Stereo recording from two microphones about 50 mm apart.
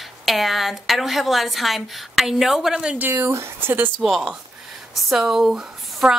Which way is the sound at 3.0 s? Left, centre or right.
Right.